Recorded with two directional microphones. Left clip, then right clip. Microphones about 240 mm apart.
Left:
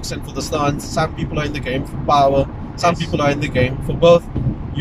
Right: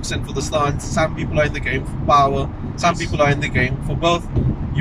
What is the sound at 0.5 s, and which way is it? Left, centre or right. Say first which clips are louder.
Speech: even; centre.